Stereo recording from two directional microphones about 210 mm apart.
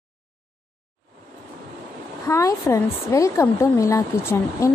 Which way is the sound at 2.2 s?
15° left (ahead or behind).